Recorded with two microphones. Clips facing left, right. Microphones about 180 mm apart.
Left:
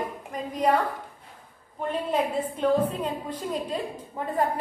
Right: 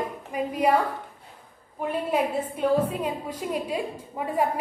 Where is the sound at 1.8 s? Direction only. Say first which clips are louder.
Right 1 dB; 10° right (ahead or behind).